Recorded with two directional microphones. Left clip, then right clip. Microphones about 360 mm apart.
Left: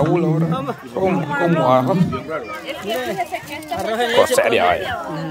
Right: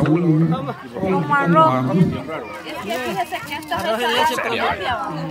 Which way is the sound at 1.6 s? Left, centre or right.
Centre.